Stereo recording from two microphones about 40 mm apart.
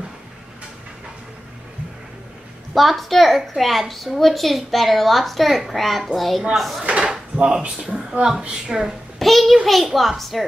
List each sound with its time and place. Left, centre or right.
2.7 s a woman's voice: centre
6.8 s a woman's voice: right
9.2 s a child's voice: centre